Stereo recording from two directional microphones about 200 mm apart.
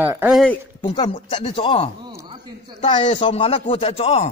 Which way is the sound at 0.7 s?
25° left (ahead or behind).